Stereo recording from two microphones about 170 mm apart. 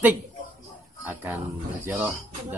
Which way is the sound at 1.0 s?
10° right (ahead or behind).